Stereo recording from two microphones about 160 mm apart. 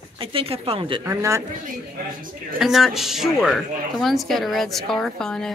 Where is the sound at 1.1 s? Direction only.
20° right (ahead or behind).